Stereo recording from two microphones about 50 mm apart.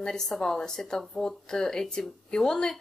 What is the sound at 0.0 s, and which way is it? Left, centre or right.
Speech, centre.